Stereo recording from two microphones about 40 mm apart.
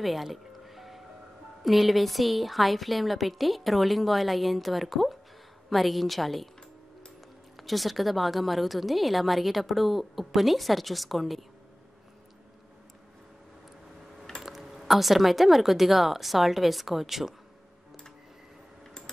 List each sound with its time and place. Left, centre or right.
0.0 s music: centre
1.6 s a woman's voice: centre
7.5 s a woman's voice: centre
14.4 s a woman's voice: centre